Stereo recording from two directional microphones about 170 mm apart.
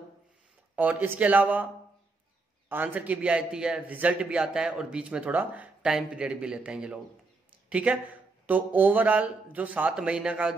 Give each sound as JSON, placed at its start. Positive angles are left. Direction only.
{"t": 0.7, "sound": "a man's voice", "side_deg": -10}
{"t": 2.7, "sound": "a man's voice", "side_deg": -10}